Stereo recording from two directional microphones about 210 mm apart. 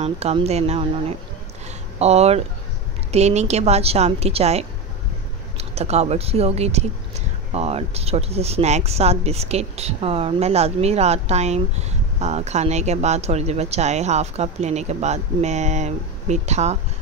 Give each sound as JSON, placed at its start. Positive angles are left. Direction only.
{"t": 0.0, "sound": "speech", "side_deg": -30}